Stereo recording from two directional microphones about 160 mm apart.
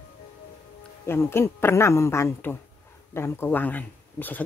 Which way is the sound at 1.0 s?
15° left (ahead or behind).